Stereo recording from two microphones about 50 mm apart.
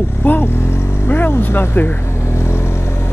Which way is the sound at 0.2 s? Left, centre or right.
Left.